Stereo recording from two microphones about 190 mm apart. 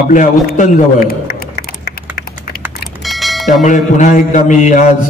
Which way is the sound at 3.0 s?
Centre (ahead or behind).